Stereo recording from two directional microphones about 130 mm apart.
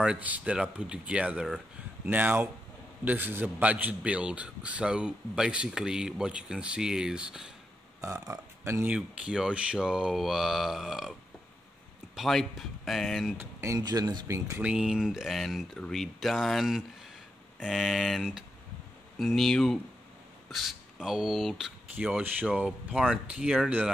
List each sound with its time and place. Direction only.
0.0 s a man's voice: 10° right (ahead or behind)
8.0 s speech: 25° right (ahead or behind)
8.9 s speech: 10° right (ahead or behind)
12.2 s speech: centre (ahead or behind)
13.4 s speech: 25° right (ahead or behind)
14.6 s a man's voice: 5° right (ahead or behind)